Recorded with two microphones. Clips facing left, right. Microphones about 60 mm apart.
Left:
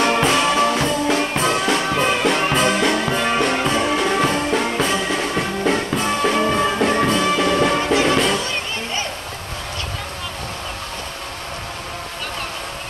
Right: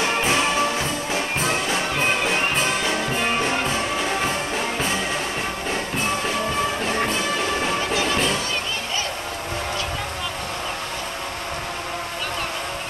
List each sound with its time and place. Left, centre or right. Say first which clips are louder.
0.0 s music: left 4 dB; left
7.9 s music: left 6 dB; left